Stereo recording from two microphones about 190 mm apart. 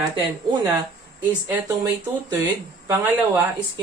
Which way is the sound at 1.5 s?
15° right (ahead or behind).